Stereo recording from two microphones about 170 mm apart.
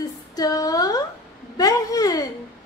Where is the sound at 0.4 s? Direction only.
20° left (ahead or behind).